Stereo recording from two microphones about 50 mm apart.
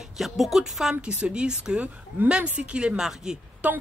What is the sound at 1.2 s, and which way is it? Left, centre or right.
Speech, centre.